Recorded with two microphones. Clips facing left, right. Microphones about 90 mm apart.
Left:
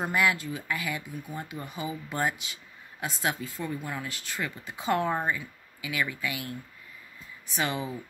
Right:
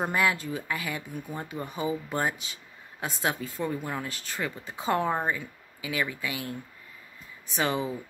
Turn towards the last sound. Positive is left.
turn(degrees=-25)  # may be behind; listen again after turning